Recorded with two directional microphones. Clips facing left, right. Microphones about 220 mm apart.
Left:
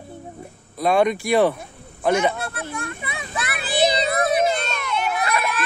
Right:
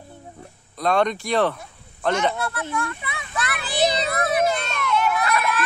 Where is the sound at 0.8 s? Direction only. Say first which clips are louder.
Left 3 dB; 10° left (ahead or behind).